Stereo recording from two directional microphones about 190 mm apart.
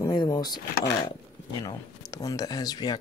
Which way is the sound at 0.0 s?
20° left (ahead or behind).